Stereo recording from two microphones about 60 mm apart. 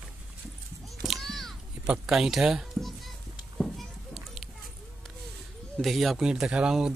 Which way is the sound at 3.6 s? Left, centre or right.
Centre.